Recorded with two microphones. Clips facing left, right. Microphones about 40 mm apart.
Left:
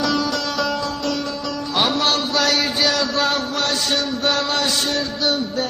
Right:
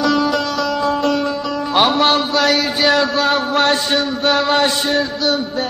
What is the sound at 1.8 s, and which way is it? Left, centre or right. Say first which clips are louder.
Music: right 5 dB; right.